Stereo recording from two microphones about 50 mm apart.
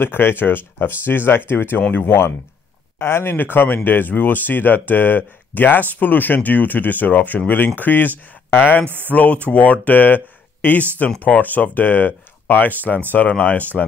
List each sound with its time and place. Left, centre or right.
0.0 s speech: left
3.0 s speech: left
3.3 s speech: left
8.8 s speech: right
9.1 s speech: left